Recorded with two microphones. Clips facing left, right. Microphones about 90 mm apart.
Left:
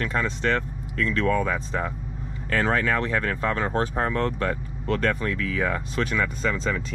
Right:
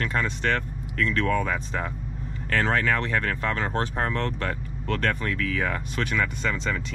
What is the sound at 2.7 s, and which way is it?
Speech, 35° left (ahead or behind).